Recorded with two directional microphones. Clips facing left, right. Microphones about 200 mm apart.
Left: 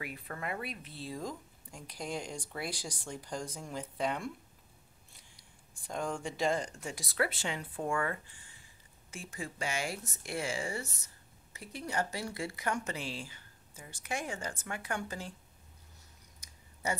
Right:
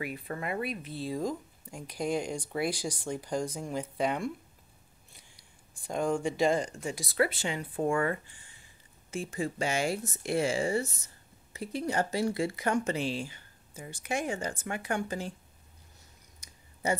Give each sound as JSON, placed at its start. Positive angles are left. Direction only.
{"t": 0.3, "sound": "speech", "side_deg": -10}
{"t": 5.9, "sound": "speech", "side_deg": -10}
{"t": 7.7, "sound": "speech", "side_deg": -25}